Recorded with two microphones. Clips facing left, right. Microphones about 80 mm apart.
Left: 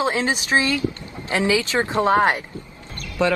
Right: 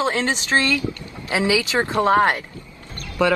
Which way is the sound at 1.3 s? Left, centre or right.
Centre.